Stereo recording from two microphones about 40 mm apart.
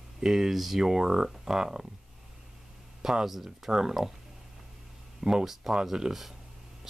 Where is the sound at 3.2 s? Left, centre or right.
Centre.